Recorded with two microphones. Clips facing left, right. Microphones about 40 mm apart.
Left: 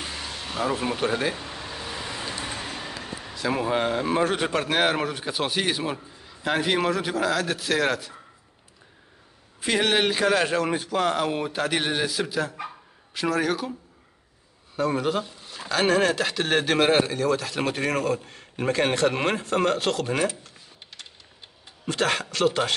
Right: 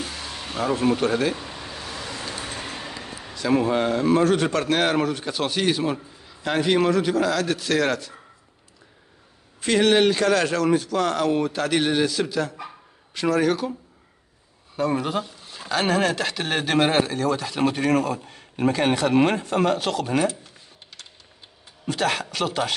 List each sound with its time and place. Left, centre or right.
0.0 s a sound: centre
0.3 s vehicle: centre
1.9 s vehicle: centre
2.4 s speech: centre
9.6 s a man's voice: centre
12.6 s dog: centre
14.8 s speech: centre
21.8 s speech: centre